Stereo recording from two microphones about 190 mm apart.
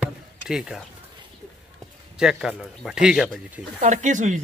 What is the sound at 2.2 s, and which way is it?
Speech, 5° right (ahead or behind).